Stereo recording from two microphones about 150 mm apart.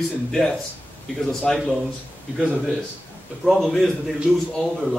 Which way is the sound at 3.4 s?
Centre (ahead or behind).